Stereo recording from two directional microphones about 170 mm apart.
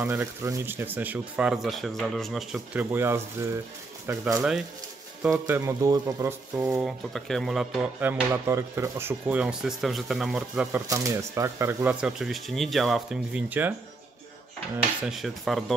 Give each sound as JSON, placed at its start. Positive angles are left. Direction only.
{"t": 0.0, "sound": "speech", "side_deg": -15}
{"t": 4.4, "sound": "speech", "side_deg": -5}
{"t": 5.3, "sound": "speech", "side_deg": -15}
{"t": 6.5, "sound": "speech", "side_deg": -5}
{"t": 10.9, "sound": "speech", "side_deg": -20}
{"t": 15.0, "sound": "speech", "side_deg": 0}